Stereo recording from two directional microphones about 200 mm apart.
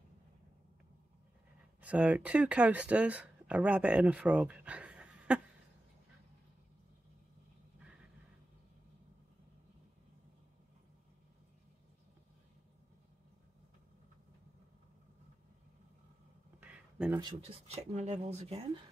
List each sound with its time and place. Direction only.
1.8 s speech: 5° right (ahead or behind)
16.5 s a sound: 10° right (ahead or behind)
17.2 s speech: 25° right (ahead or behind)